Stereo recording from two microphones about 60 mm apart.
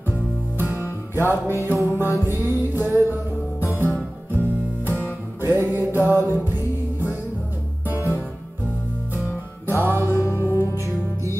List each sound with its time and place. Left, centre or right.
1.1 s music: right
4.3 s music: right
9.7 s music: right